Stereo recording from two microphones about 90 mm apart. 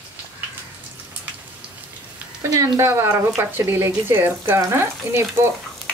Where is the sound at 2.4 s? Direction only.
40° right (ahead or behind).